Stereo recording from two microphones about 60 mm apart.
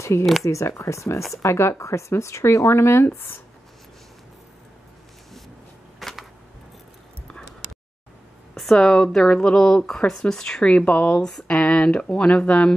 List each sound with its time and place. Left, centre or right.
0.0 s speech: left
5.9 s a sound: centre
8.5 s speech: centre